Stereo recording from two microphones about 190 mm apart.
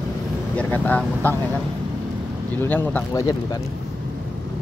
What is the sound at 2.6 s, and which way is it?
Speech, 10° left (ahead or behind).